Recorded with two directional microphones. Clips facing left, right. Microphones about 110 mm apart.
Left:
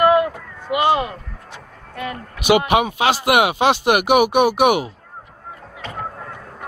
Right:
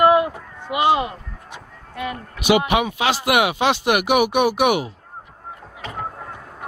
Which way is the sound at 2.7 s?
50° left (ahead or behind).